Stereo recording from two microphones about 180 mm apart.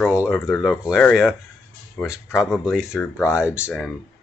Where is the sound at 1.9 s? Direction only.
15° left (ahead or behind).